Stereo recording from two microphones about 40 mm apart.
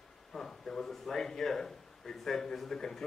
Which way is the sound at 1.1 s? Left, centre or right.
Centre.